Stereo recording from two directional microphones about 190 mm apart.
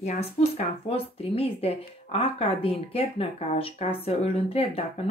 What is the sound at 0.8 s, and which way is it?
Speech, 30° left (ahead or behind).